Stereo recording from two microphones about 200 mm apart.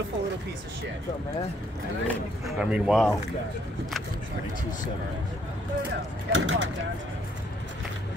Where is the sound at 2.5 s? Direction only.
5° right (ahead or behind).